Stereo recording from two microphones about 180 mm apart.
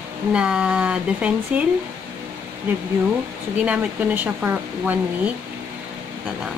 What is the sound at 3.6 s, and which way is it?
Speech, 10° right (ahead or behind).